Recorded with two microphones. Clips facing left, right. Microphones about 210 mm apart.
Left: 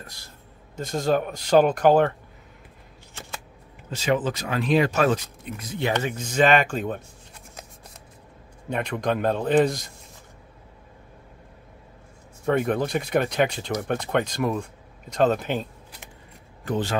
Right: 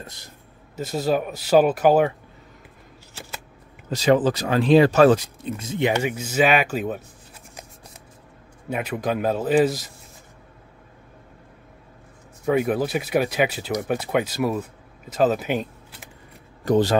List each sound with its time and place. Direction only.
0.0 s speech: 20° right (ahead or behind)
0.7 s speech: 5° right (ahead or behind)
3.9 s speech: 35° right (ahead or behind); by 7.0 s 5° right (ahead or behind)
8.6 s a man's voice: 5° right (ahead or behind)
12.4 s speech: 5° right (ahead or behind)
16.6 s speech: 40° right (ahead or behind)